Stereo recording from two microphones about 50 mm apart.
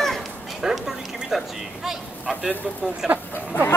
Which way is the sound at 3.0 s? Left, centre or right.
Centre.